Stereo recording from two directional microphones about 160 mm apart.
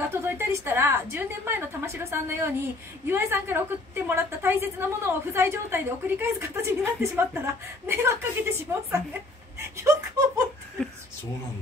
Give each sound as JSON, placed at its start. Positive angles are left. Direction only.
{"t": 0.1, "sound": "a woman's voice", "side_deg": -15}